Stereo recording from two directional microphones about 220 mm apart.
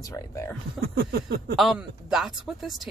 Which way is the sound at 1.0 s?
45° right (ahead or behind).